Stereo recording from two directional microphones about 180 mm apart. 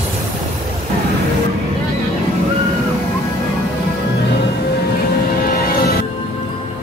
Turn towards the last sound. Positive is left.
turn(degrees=60)  # may be behind; listen again after turning